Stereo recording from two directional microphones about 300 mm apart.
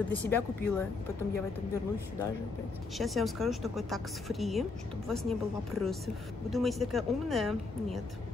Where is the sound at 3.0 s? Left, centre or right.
Centre.